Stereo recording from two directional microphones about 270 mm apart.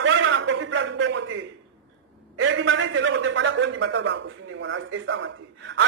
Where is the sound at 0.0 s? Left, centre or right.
Right.